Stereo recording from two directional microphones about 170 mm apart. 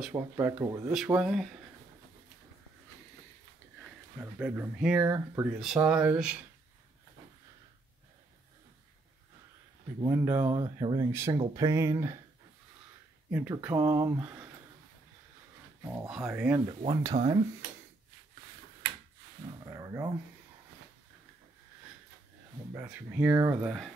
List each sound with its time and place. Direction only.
0.0 s speech: 10° right (ahead or behind)
4.2 s speech: 5° right (ahead or behind)
5.6 s speech: 5° right (ahead or behind)
10.0 s speech: 15° right (ahead or behind)
13.3 s speech: 10° right (ahead or behind)
16.1 s speech: 5° right (ahead or behind)
16.6 s speech: 25° right (ahead or behind)
19.6 s dog: 20° right (ahead or behind)
22.8 s speech: 10° right (ahead or behind)
23.6 s speech: centre (ahead or behind)